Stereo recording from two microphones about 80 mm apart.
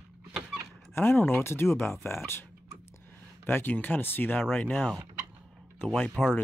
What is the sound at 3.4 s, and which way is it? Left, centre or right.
Speech, left.